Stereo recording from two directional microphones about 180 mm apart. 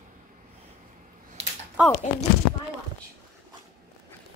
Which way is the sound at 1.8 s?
5° right (ahead or behind).